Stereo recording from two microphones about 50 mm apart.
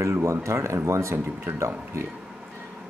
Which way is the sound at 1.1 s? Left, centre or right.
Right.